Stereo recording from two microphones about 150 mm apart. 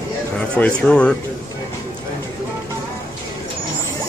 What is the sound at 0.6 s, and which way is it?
Speech, 5° left (ahead or behind).